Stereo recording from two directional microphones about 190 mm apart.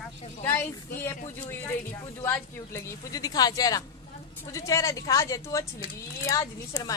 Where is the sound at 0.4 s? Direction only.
10° left (ahead or behind).